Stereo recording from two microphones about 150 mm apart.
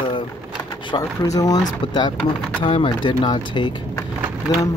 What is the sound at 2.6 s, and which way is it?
Speech, 35° left (ahead or behind).